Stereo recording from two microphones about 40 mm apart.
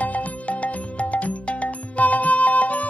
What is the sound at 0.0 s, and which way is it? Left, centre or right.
Music, left.